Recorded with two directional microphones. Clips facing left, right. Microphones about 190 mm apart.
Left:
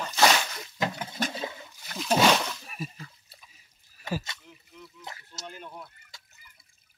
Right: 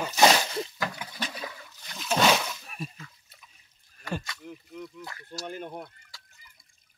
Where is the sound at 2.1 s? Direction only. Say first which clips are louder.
Left 1 dB; centre (ahead or behind).